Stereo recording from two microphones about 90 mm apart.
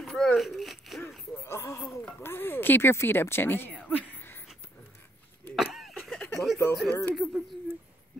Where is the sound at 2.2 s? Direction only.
25° left (ahead or behind).